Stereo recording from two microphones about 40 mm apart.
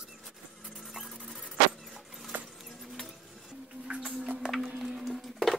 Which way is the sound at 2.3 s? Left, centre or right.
Right.